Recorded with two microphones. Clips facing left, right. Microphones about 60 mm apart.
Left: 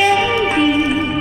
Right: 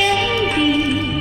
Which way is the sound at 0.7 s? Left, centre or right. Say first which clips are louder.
Left 2 dB; left.